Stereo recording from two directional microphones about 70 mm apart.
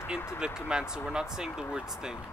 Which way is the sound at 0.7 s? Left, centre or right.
Centre.